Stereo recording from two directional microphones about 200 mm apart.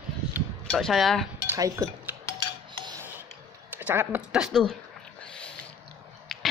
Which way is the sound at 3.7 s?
10° right (ahead or behind).